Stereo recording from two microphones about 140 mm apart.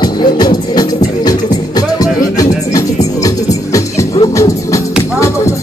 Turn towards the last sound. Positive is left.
turn(degrees=25)  # may be behind; listen again after turning